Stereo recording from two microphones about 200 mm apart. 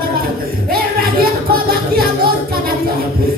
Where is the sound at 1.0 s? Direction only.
50° right (ahead or behind).